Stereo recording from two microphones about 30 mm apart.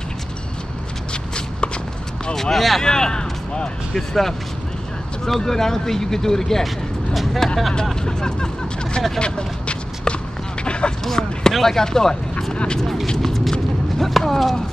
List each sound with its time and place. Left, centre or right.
2.5 s speech: centre
2.8 s speech: left
3.9 s speech: centre
5.4 s speech: centre
7.9 s speech: left
9.2 s a sound: left
10.6 s music: left
11.1 s speech: centre
13.0 s a sound: centre